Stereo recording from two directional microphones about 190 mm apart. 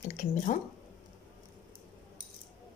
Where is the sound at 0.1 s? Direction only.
40° left (ahead or behind).